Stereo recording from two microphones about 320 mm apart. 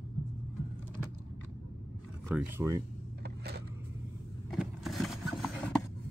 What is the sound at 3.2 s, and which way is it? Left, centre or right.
Vehicle, right.